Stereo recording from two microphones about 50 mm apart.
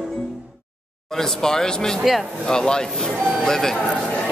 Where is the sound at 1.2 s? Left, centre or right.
Centre.